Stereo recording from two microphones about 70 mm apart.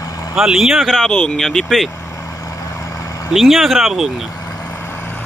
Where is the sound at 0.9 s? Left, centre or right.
Centre.